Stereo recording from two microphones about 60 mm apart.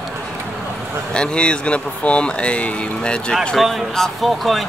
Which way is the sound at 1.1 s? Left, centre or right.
Centre.